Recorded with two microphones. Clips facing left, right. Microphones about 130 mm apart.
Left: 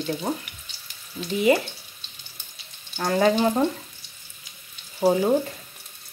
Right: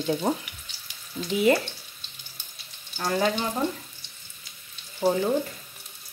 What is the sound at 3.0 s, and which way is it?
Frying, 40° left (ahead or behind).